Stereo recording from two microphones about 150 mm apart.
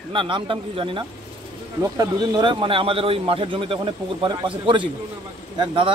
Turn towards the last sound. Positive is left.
turn(degrees=-35)  # may be behind; listen again after turning